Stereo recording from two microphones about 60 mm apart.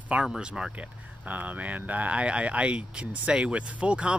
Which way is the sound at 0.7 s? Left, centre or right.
Right.